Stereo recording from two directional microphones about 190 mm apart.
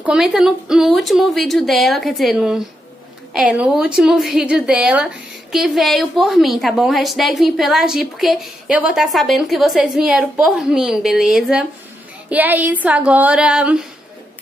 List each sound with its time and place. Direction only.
0.0 s a woman's voice: 5° right (ahead or behind)